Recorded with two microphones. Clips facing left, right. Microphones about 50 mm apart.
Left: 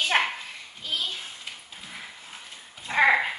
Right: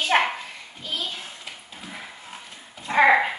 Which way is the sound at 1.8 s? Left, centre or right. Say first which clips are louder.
Right 4 dB; centre.